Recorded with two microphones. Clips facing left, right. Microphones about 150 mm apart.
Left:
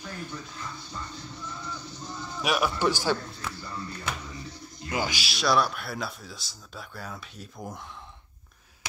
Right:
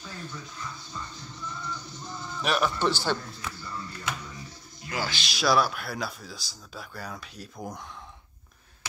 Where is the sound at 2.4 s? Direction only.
10° left (ahead or behind).